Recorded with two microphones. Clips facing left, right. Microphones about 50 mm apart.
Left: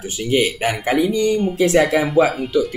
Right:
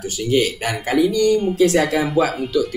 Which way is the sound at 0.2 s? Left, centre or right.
Left.